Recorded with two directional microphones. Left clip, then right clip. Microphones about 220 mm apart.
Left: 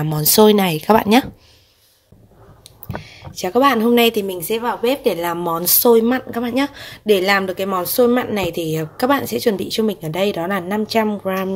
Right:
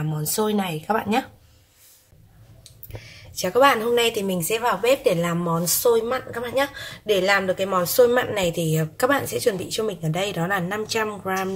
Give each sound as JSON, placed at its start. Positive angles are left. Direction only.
{"t": 0.0, "sound": "speech", "side_deg": 40}
{"t": 2.6, "sound": "speech", "side_deg": 35}